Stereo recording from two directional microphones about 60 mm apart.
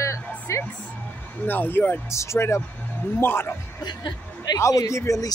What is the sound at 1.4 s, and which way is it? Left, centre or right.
Speech, left.